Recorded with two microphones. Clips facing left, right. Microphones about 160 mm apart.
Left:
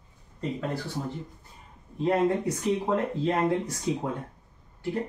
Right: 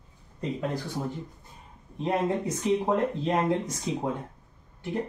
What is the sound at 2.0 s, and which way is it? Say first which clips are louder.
A woman's voice: left 3 dB; 20° right (ahead or behind).